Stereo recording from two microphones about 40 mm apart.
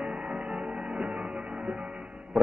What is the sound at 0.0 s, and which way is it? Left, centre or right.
Music, right.